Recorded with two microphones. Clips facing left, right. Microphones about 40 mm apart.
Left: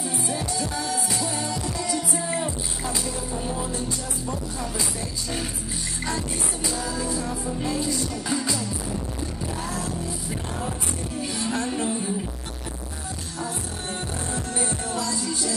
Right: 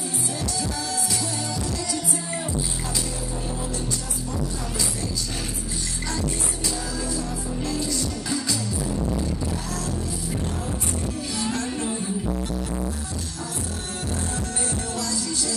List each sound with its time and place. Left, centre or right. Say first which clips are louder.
0.3 s music: even; centre
6.7 s music: left 2 dB; centre
11.5 s music: left 1 dB; centre
14.3 s music: even; centre